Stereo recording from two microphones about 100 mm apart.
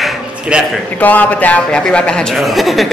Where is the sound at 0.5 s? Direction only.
10° right (ahead or behind).